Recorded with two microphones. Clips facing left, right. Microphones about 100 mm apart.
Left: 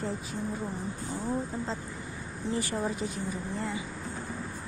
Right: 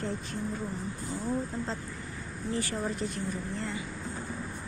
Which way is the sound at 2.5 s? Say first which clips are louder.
Left 1 dB; 15° left (ahead or behind).